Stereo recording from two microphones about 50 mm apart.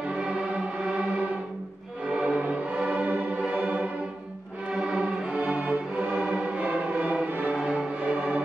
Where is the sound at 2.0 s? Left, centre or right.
Centre.